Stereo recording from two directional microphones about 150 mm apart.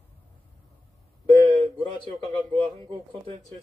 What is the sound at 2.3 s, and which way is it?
A man's voice, 35° right (ahead or behind).